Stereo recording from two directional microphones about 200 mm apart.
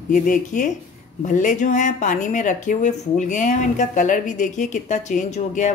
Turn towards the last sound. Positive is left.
turn(degrees=35)  # may be behind; listen again after turning